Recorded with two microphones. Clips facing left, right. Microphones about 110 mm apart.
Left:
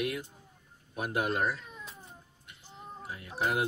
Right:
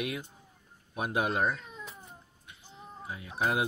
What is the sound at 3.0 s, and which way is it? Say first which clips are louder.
Speech: right 4 dB; 20° right (ahead or behind).